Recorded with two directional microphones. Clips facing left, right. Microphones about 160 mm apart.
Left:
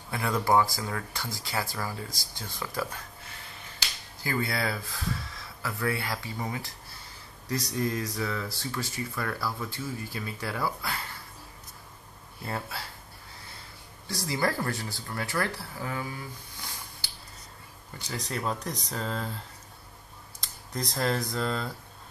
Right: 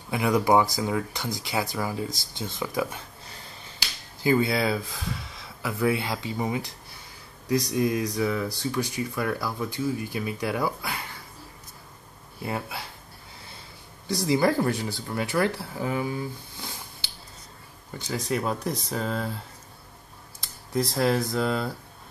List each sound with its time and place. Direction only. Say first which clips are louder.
0.1 s speech: right 4 dB; 15° right (ahead or behind)
4.2 s speech: right 8 dB; 20° right (ahead or behind)
12.4 s speech: right 4 dB; 15° right (ahead or behind)
14.0 s speech: right 7 dB; 20° right (ahead or behind)
18.1 s speech: right 5 dB; 10° right (ahead or behind)
20.3 s speech: right 8 dB; 5° right (ahead or behind)